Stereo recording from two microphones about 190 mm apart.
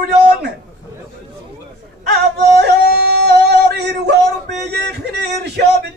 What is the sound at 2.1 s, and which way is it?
Yodeling, 60° right (ahead or behind).